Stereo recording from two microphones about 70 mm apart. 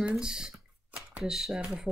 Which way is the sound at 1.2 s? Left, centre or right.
Centre.